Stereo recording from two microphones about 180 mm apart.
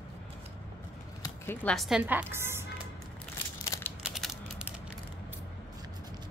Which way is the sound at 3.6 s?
15° left (ahead or behind).